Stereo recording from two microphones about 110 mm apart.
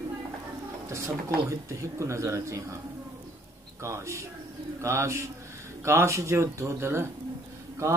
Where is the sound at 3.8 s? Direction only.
25° right (ahead or behind).